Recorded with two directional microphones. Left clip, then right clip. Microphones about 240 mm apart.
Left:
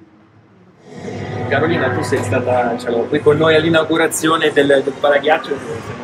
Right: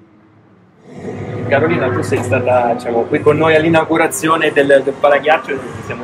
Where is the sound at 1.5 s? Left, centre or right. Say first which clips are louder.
Right 2 dB; centre.